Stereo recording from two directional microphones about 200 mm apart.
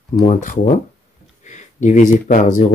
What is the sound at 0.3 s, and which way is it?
Speech, 40° left (ahead or behind).